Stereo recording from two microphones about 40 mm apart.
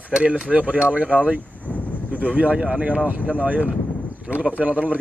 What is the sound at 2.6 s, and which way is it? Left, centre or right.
Speech, centre.